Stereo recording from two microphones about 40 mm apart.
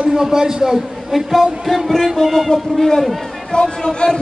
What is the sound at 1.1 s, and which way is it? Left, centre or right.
Speech, centre.